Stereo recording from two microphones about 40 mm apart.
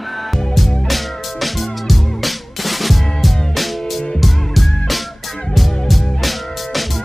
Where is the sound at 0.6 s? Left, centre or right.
Centre.